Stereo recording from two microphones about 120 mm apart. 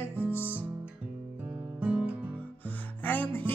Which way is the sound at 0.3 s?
20° left (ahead or behind).